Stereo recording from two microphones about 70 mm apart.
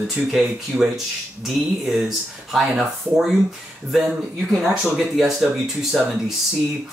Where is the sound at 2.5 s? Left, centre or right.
Centre.